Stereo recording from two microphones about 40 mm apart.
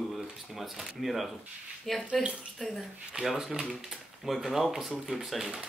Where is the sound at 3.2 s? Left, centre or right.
Centre.